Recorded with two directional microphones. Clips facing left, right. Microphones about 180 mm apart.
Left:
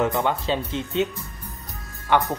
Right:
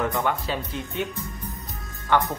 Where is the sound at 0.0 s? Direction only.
20° left (ahead or behind).